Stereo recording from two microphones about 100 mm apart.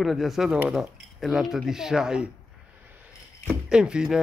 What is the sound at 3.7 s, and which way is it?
Speech, 10° right (ahead or behind).